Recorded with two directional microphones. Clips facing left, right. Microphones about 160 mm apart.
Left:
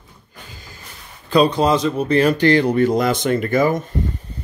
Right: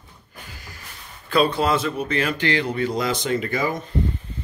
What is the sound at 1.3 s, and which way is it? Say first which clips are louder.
Speech: left 4 dB; 15° left (ahead or behind).